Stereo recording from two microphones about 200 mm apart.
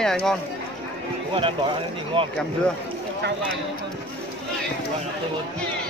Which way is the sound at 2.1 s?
25° right (ahead or behind).